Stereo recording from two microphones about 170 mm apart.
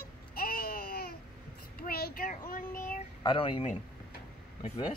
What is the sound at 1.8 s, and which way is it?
Child singing, 60° left (ahead or behind).